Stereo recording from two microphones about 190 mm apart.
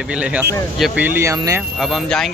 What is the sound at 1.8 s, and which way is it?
Speech, centre (ahead or behind).